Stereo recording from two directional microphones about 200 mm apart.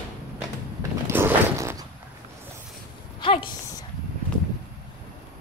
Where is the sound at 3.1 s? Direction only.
25° left (ahead or behind).